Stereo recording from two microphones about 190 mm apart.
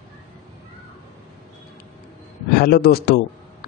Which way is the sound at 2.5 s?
55° left (ahead or behind).